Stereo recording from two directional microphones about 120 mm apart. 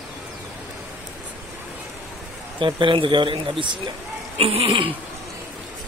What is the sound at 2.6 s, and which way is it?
Speech, 45° right (ahead or behind).